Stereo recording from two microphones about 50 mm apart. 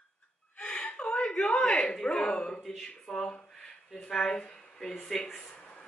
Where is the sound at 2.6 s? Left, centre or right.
Centre.